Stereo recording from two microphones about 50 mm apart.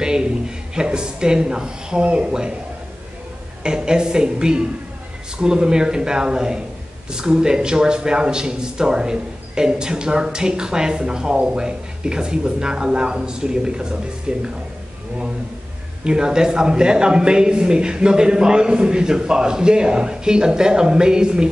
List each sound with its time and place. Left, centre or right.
0.0 s a man's voice: centre
3.6 s a man's voice: centre
16.0 s a man's voice: centre